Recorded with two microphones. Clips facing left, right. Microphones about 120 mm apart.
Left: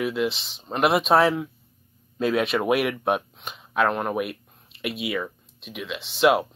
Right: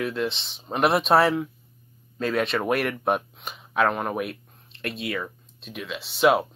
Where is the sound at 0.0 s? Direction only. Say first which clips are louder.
Left 2 dB; 5° left (ahead or behind).